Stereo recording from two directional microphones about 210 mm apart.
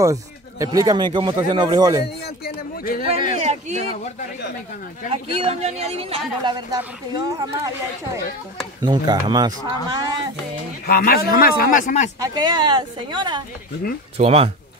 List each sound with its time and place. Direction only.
0.0 s speech: 15° right (ahead or behind)
2.4 s speech: 40° left (ahead or behind)
3.3 s a man's voice: 30° right (ahead or behind)
5.1 s speech: 30° right (ahead or behind)
10.9 s speech: 45° left (ahead or behind)
12.2 s speech: 20° right (ahead or behind)